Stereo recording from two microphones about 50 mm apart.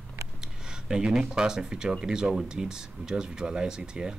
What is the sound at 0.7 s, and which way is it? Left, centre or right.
Speech, centre.